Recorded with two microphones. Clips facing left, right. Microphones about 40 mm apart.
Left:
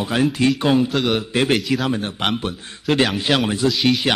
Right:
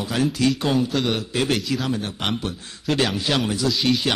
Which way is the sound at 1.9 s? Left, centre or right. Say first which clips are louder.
Left 3 dB; left.